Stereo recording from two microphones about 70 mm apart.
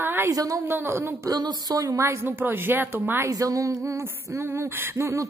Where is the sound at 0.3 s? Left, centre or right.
Right.